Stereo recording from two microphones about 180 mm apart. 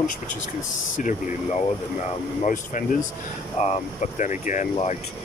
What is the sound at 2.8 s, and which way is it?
Speech, 45° left (ahead or behind).